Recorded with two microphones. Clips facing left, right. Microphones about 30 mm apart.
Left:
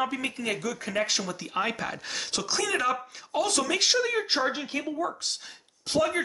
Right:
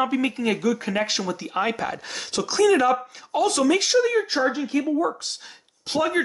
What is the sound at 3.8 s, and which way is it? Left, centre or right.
Speech, centre.